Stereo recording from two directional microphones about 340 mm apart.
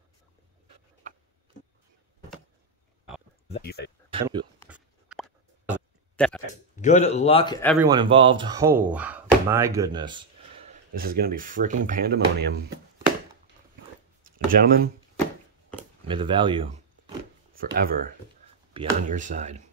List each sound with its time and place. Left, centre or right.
3.4 s a sound: centre
4.1 s speech: centre
4.6 s a sound: centre
6.8 s speech: left
7.8 s speech: centre
10.7 s speech: right
14.2 s a sound: right
16.1 s speech: centre
17.6 s speech: right
18.7 s speech: centre